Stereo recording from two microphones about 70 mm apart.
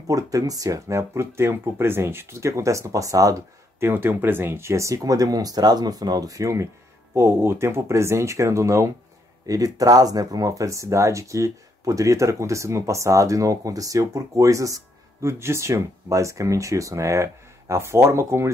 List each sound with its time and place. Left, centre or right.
0.0 s speech: right
3.8 s speech: right
9.5 s speech: right
15.2 s speech: right